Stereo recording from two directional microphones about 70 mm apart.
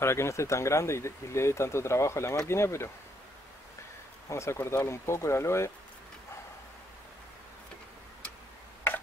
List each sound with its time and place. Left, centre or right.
0.0 s speech: left
4.3 s speech: left